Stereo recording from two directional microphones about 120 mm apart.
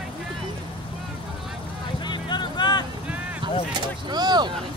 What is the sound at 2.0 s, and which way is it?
Vehicle, 40° left (ahead or behind).